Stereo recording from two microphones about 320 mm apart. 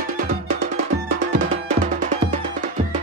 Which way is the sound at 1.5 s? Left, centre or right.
Right.